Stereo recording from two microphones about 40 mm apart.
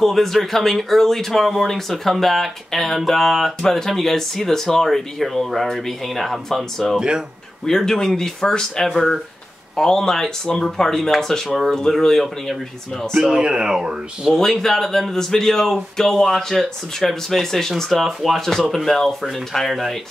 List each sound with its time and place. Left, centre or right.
0.0 s speech: centre
7.0 s speech: right
7.6 s speech: centre
13.2 s speech: centre
14.3 s speech: centre